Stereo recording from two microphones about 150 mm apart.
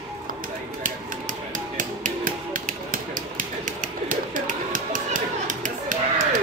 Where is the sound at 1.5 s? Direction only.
60° right (ahead or behind).